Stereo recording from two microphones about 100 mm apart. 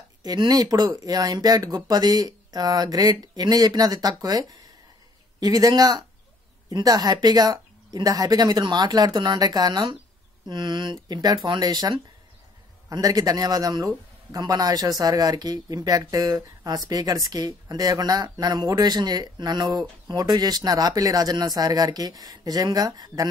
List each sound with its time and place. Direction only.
0.2 s a man's voice: 40° right (ahead or behind)
12.9 s a man's voice: 40° right (ahead or behind)